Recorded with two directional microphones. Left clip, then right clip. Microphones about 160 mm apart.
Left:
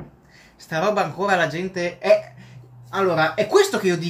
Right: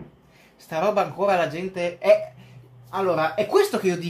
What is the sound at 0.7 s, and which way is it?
Speech, 10° right (ahead or behind).